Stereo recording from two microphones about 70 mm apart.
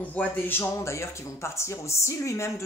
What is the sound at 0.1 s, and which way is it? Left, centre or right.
Speech, left.